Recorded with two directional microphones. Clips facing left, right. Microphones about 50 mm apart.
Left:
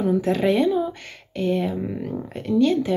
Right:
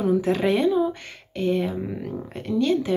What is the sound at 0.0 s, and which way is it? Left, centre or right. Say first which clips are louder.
A woman's voice: left 1 dB; centre.